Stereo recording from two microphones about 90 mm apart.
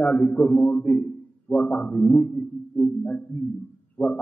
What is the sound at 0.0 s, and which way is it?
Speech, 15° left (ahead or behind).